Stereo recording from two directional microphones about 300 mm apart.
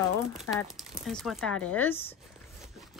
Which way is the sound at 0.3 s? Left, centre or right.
Centre.